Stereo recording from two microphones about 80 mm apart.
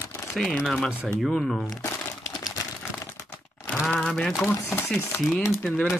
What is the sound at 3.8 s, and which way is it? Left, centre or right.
Speech, centre.